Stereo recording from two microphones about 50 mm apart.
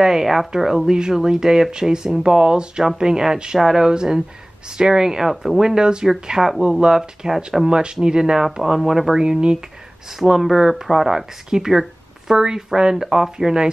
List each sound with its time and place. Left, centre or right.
0.0 s speech: centre
5.6 s speech: centre
7.6 s speech: centre
9.2 s speech: centre
10.1 s speech: centre